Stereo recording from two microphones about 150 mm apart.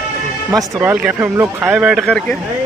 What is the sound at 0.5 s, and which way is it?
Speech, 20° right (ahead or behind).